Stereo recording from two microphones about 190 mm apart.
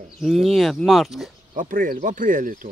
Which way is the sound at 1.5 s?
45° right (ahead or behind).